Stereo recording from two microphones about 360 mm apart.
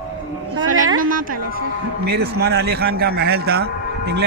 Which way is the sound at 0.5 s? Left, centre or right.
Right.